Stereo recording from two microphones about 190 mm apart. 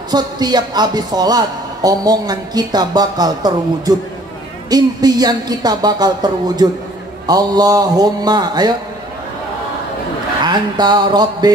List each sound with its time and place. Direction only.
0.1 s a man's voice: 20° right (ahead or behind)
10.4 s a man's voice: 20° right (ahead or behind)